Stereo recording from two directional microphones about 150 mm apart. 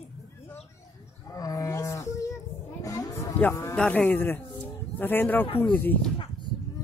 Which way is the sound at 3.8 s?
10° left (ahead or behind).